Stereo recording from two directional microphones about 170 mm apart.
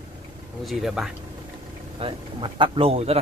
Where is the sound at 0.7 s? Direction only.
Centre (ahead or behind).